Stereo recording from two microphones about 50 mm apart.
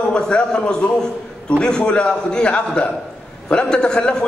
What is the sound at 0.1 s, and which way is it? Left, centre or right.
A man's voice, centre.